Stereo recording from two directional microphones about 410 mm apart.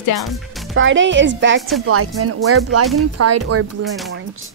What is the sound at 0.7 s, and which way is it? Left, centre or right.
A woman's voice, right.